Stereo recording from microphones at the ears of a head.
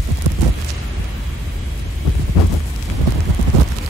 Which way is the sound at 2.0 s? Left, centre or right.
Left.